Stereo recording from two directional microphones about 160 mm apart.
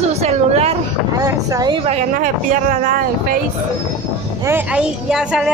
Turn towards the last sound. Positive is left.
turn(degrees=-5)  # may be behind; listen again after turning